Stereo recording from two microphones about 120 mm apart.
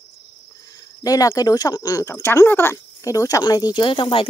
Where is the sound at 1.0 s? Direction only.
30° left (ahead or behind).